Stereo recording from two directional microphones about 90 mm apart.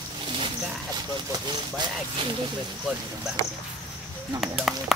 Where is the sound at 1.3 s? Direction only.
55° right (ahead or behind).